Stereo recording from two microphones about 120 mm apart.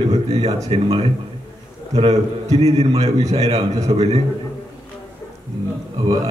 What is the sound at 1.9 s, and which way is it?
A man's voice, 65° right (ahead or behind).